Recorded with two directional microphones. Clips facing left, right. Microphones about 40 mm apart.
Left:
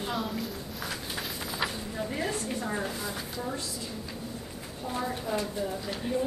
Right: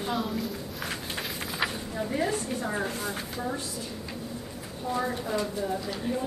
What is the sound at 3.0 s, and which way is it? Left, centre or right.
Speech, right.